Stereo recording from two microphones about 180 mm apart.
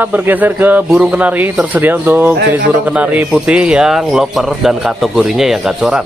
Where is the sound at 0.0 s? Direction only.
10° right (ahead or behind).